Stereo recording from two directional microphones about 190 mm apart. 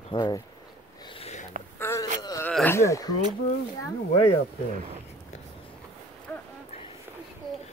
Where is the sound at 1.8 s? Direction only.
15° left (ahead or behind).